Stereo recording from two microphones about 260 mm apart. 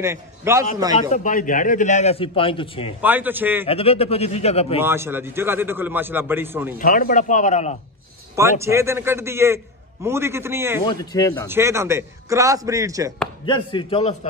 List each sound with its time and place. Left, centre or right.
0.0 s a man's voice: centre
1.1 s a man's voice: left
3.0 s a man's voice: centre
3.6 s a man's voice: left
4.7 s a man's voice: centre
6.8 s a man's voice: left
8.4 s a man's voice: centre
10.9 s speech: centre
11.4 s a man's voice: centre
13.5 s a man's voice: centre